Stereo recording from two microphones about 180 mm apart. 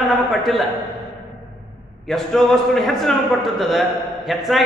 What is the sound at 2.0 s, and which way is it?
A man's voice, centre (ahead or behind).